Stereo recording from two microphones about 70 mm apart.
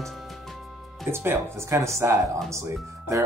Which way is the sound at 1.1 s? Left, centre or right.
Right.